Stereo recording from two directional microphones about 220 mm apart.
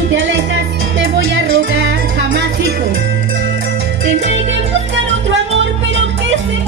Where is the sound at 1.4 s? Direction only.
60° right (ahead or behind).